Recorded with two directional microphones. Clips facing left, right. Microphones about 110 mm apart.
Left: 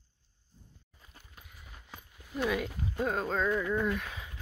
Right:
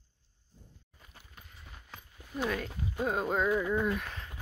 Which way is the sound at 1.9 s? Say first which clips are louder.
Even; centre (ahead or behind).